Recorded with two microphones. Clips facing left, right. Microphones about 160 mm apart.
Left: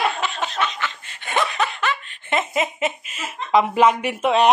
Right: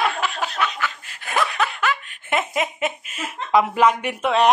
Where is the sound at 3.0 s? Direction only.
50° right (ahead or behind).